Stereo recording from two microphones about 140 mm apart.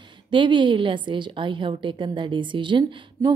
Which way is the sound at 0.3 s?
35° right (ahead or behind).